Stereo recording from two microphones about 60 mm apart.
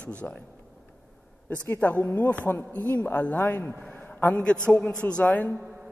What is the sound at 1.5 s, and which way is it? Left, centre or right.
A man's voice, left.